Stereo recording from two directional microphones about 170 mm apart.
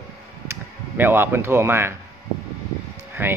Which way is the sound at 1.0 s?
10° right (ahead or behind).